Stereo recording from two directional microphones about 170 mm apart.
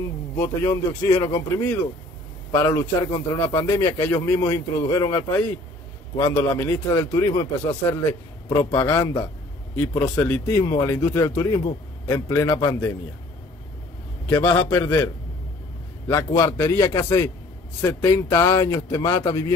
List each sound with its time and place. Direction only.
0.4 s speech: 20° left (ahead or behind)
2.5 s a man's voice: 20° left (ahead or behind)
14.3 s a man's voice: 10° left (ahead or behind)
16.1 s a man's voice: 20° left (ahead or behind)